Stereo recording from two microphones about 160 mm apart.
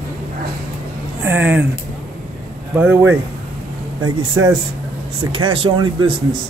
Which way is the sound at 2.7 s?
15° right (ahead or behind).